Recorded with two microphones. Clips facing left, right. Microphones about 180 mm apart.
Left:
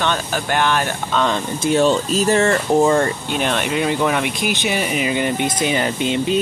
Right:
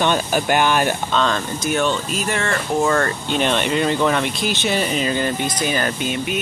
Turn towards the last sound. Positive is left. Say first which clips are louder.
# left 4 dB
turn(degrees=25)  # may be behind; listen again after turning